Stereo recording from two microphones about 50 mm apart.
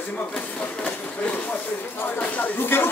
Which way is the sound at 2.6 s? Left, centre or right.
Left.